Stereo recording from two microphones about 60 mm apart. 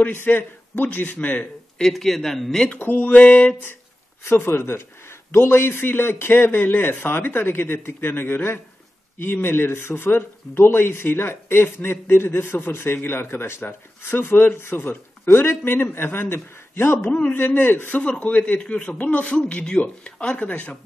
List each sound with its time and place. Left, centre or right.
0.0 s speech: left
1.8 s speech: centre
2.8 s speech: left
4.2 s speech: left